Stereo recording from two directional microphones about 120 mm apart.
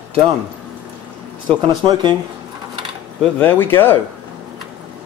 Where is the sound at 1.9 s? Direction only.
40° right (ahead or behind).